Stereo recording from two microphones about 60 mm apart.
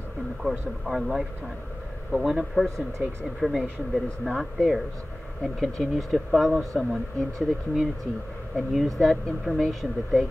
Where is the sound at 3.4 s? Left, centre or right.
Centre.